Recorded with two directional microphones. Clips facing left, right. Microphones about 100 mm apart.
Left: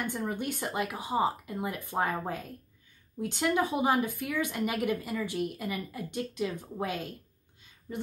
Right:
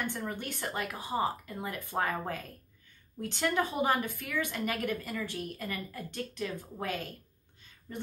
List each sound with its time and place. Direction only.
0.0 s a woman's voice: 15° left (ahead or behind)